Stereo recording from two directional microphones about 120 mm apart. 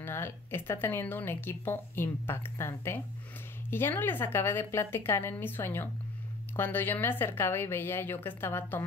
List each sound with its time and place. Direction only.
0.0 s speech: 20° left (ahead or behind)